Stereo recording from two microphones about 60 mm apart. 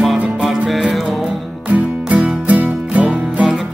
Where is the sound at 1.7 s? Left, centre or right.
Right.